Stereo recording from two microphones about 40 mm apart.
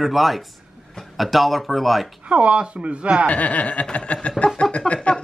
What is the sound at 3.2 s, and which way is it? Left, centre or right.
A man's voice, left.